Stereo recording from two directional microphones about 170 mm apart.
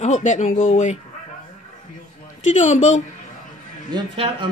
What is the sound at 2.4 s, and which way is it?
Speech, 45° left (ahead or behind).